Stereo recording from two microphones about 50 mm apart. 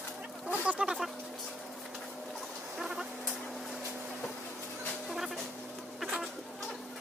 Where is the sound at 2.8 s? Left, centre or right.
Centre.